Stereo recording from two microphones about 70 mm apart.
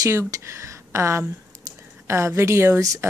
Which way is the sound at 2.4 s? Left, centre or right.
Right.